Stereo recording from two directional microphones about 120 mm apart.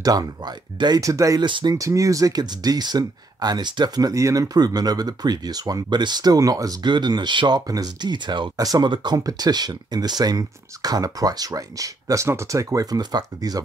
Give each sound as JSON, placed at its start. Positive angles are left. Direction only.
{"t": 0.0, "sound": "speech", "side_deg": -30}
{"t": 1.4, "sound": "speech", "side_deg": -40}
{"t": 1.8, "sound": "speech", "side_deg": -25}